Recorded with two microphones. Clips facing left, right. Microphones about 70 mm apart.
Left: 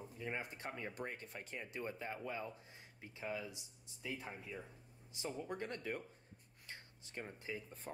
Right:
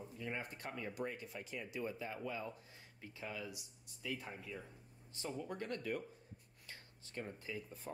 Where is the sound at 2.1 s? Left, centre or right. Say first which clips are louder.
Right 1 dB; left; by 5.4 s centre.